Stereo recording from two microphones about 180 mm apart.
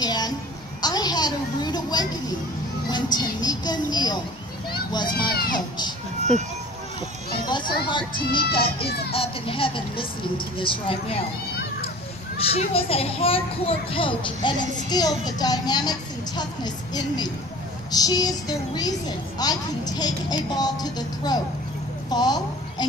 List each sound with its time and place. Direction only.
0.0 s a sound: 20° left (ahead or behind)
2.9 s music: 25° left (ahead or behind)
4.6 s children playing: 25° left (ahead or behind)
5.5 s crowd: 25° left (ahead or behind)
7.4 s children playing: 25° left (ahead or behind)
7.9 s speech: 25° left (ahead or behind)
8.8 s a child's voice: 60° left (ahead or behind)
9.1 s speech: 30° left (ahead or behind)
12.5 s a child's voice: 30° left (ahead or behind)